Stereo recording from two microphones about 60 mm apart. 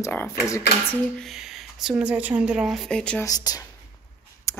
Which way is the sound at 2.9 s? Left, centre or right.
Centre.